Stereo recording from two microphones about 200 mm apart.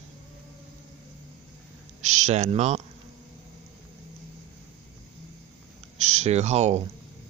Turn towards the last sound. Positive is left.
turn(degrees=-35)  # may be behind; listen again after turning